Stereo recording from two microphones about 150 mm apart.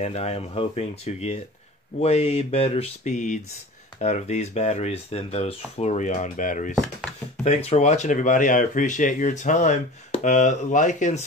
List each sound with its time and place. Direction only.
0.0 s speech: 45° left (ahead or behind)
7.4 s speech: 45° left (ahead or behind)